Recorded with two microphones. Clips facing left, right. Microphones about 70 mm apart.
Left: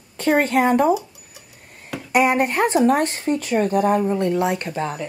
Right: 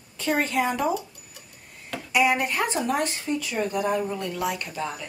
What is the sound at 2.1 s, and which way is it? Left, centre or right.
Speech, left.